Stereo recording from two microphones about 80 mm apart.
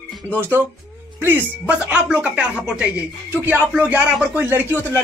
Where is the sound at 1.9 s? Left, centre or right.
Centre.